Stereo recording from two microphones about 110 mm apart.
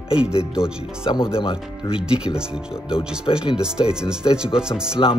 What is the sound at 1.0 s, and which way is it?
Speech, 55° left (ahead or behind).